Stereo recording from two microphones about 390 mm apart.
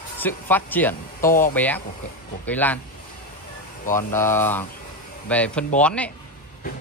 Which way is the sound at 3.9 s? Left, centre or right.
Centre.